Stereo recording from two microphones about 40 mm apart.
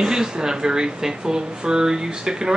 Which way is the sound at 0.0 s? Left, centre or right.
Centre.